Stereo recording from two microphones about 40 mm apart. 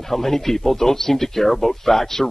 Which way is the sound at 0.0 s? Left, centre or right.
Centre.